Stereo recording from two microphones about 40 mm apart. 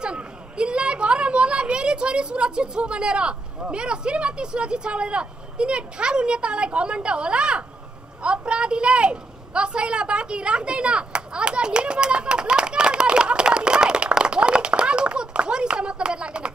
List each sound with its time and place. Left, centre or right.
0.0 s a woman's voice: right